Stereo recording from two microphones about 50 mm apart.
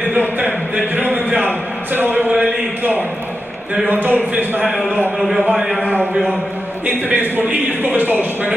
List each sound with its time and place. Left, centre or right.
1.1 s a sound: right
3.8 s a man's voice: right
5.8 s a man's voice: right